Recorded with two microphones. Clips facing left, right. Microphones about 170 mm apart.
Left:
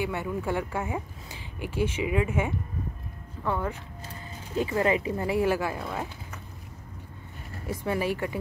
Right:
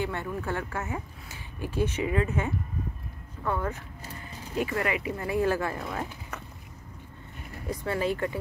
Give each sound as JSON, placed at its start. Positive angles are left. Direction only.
{"t": 0.0, "sound": "speech", "side_deg": 10}
{"t": 4.6, "sound": "speech", "side_deg": 25}
{"t": 7.8, "sound": "speech", "side_deg": 10}